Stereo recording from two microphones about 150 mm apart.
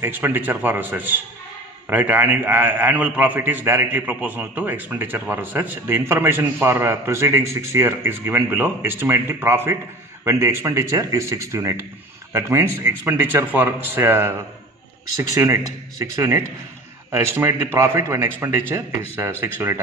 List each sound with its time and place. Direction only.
0.0 s a man's voice: 15° right (ahead or behind)